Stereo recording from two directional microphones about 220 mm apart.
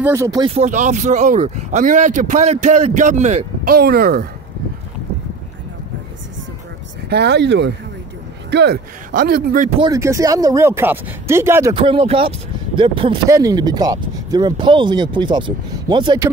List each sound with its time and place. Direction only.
0.0 s speech: 15° right (ahead or behind)
0.6 s speech: 35° right (ahead or behind)
7.1 s a man's voice: 50° right (ahead or behind)
9.8 s speech: 15° right (ahead or behind)
11.7 s speech: 25° right (ahead or behind)